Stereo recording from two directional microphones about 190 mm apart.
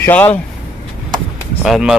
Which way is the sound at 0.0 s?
10° left (ahead or behind).